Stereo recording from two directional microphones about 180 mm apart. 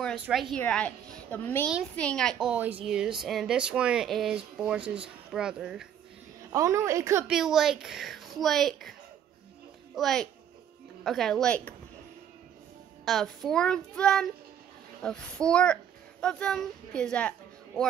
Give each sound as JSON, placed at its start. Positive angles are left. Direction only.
{"t": 0.0, "sound": "a woman's voice", "side_deg": 0}
{"t": 1.7, "sound": "speech", "side_deg": -5}
{"t": 6.5, "sound": "a woman's voice", "side_deg": -15}
{"t": 7.2, "sound": "speech", "side_deg": 0}
{"t": 9.9, "sound": "speech", "side_deg": 0}
{"t": 13.0, "sound": "speech", "side_deg": 0}